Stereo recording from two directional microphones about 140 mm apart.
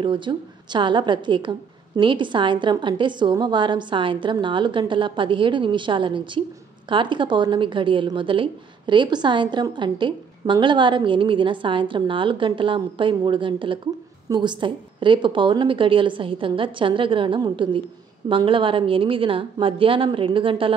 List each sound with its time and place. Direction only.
0.0 s a woman's voice: 35° right (ahead or behind)